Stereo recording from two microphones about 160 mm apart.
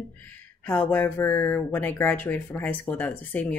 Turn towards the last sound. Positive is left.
turn(degrees=10)  # may be behind; listen again after turning